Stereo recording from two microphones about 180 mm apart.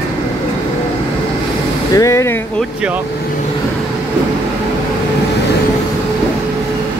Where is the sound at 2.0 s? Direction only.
15° left (ahead or behind).